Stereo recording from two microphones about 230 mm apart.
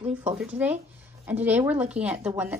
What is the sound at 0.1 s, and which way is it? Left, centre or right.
A woman's voice, centre.